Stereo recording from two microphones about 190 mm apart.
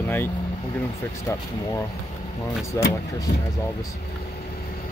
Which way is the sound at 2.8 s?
15° left (ahead or behind).